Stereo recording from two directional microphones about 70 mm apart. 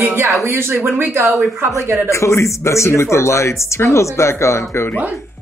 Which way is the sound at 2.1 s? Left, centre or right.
Left.